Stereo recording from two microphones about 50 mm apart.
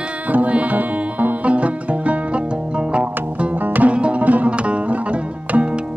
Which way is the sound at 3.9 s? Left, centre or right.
Right.